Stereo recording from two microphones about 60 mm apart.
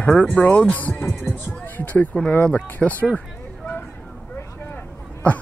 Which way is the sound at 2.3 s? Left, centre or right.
Left.